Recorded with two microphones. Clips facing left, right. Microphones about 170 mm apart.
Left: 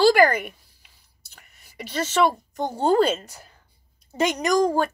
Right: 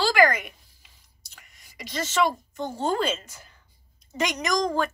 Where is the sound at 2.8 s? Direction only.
35° left (ahead or behind).